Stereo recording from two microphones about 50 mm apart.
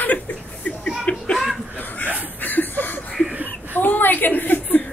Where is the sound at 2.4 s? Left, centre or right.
Left.